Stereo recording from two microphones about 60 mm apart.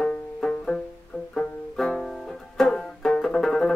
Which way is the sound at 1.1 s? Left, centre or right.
Left.